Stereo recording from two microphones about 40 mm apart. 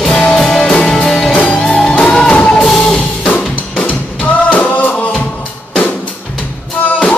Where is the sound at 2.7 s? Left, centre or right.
Centre.